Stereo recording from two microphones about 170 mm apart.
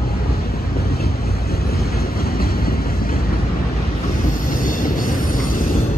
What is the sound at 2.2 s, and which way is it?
Vehicle, 60° left (ahead or behind).